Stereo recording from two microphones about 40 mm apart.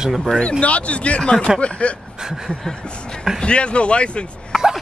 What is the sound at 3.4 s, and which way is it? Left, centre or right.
Speech, left.